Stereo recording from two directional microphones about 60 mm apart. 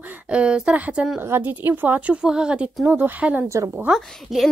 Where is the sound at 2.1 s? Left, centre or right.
Centre.